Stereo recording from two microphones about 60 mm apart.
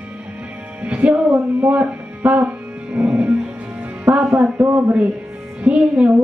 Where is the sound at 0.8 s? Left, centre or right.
Right.